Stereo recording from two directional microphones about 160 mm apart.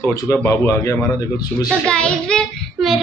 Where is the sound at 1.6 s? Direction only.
5° left (ahead or behind).